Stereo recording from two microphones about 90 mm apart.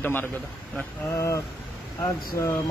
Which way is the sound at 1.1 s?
35° left (ahead or behind).